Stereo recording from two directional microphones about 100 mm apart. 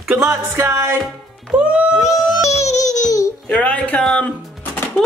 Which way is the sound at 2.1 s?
40° left (ahead or behind).